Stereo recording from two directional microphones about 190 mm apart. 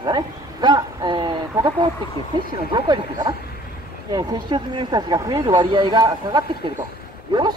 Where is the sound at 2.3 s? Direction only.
25° right (ahead or behind).